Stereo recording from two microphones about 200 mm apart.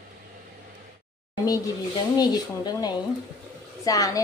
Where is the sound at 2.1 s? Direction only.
20° left (ahead or behind).